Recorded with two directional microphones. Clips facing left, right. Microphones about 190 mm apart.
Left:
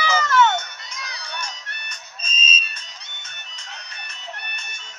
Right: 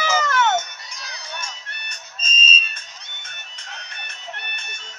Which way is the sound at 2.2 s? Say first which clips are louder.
Right 3 dB; 15° left (ahead or behind).